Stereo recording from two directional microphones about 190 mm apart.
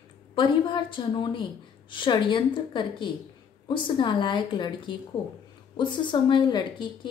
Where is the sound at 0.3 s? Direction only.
25° left (ahead or behind).